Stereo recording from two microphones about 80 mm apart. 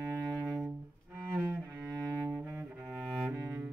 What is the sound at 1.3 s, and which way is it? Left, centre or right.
Cello, right.